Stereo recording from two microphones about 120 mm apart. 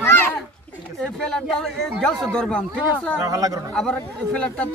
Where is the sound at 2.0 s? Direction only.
5° left (ahead or behind).